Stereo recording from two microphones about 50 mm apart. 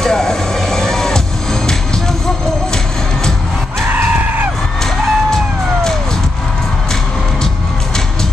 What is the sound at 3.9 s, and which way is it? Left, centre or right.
Screaming, right.